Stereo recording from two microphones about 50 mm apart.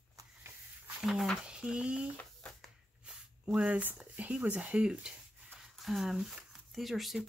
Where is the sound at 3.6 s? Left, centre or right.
Right.